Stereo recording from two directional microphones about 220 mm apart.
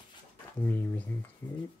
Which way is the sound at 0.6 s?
10° left (ahead or behind).